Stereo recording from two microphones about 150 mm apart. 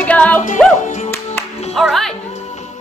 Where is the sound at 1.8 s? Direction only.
Centre (ahead or behind).